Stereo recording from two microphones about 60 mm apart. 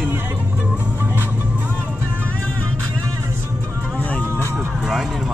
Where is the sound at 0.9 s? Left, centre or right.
Right.